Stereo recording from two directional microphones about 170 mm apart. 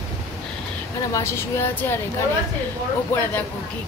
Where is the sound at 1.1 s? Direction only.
15° left (ahead or behind).